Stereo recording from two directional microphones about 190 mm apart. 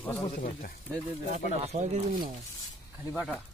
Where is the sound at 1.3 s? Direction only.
40° right (ahead or behind).